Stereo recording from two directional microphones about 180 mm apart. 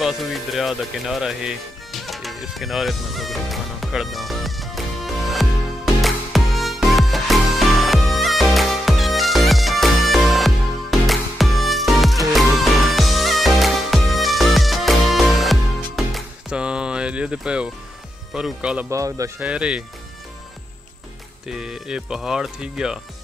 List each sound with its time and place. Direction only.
0.0 s speech: centre (ahead or behind)
5.9 s music: centre (ahead or behind)
18.3 s speech: 5° right (ahead or behind)
18.9 s speech: 15° right (ahead or behind)
21.5 s speech: 5° right (ahead or behind)